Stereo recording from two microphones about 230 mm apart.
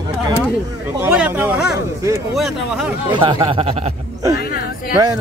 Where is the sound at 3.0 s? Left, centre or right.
Right.